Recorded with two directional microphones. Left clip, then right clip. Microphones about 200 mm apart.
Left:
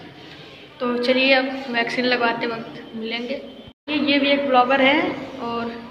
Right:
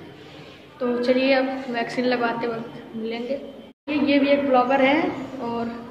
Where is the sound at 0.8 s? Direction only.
5° right (ahead or behind).